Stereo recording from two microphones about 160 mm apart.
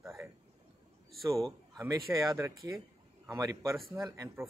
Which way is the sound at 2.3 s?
20° right (ahead or behind).